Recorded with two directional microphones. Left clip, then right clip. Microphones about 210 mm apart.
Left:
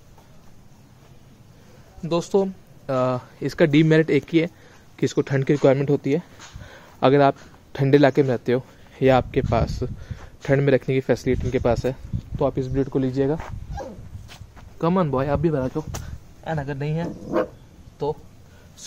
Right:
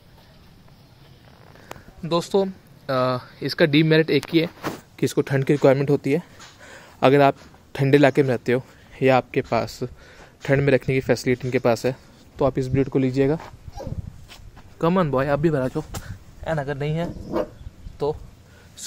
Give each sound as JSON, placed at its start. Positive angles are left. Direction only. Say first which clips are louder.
{"t": 2.0, "sound": "speech", "louder": "even", "side_deg": 5}
{"t": 14.3, "sound": "speech", "louder": "left 1 dB", "side_deg": 0}
{"t": 16.4, "sound": "speech", "louder": "right 3 dB", "side_deg": -20}